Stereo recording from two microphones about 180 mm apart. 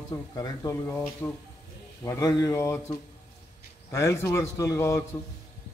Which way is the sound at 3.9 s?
15° left (ahead or behind).